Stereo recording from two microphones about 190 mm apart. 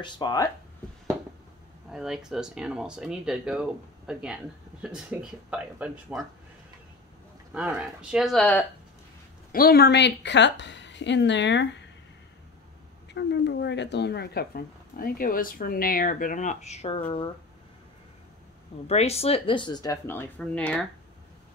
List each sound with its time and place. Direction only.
0.0 s speech: 20° left (ahead or behind)
1.9 s speech: 5° right (ahead or behind)
7.5 s speech: 5° right (ahead or behind)
9.5 s a woman's voice: 50° left (ahead or behind); by 11.8 s 70° left (ahead or behind)
13.1 s speech: 65° left (ahead or behind); by 17.0 s 35° left (ahead or behind)
18.9 s speech: 35° left (ahead or behind); by 20.8 s 5° left (ahead or behind)